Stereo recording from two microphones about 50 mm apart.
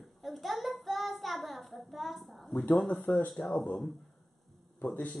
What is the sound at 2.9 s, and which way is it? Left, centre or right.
Speech, left.